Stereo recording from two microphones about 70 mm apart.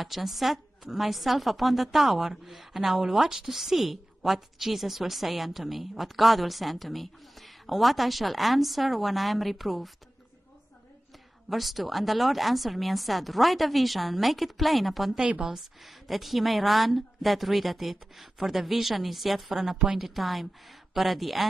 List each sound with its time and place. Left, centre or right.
0.0 s a woman's voice: centre
11.4 s a woman's voice: centre
15.2 s a woman's voice: centre
15.5 s a woman's voice: centre